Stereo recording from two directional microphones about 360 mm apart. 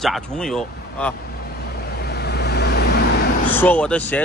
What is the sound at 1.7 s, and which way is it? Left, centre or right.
Vehicle, left.